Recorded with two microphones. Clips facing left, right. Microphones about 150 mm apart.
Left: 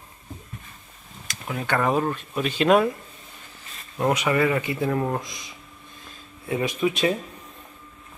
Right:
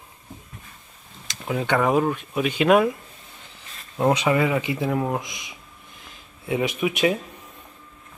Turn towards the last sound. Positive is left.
turn(degrees=-10)  # may be behind; listen again after turning